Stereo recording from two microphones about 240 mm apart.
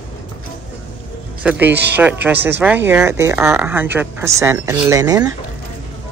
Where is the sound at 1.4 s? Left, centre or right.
Centre.